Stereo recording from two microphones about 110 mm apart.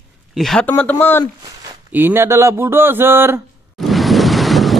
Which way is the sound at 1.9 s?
20° right (ahead or behind).